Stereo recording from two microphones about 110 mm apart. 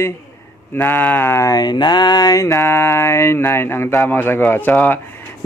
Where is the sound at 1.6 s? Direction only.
40° left (ahead or behind); by 5.2 s 20° left (ahead or behind).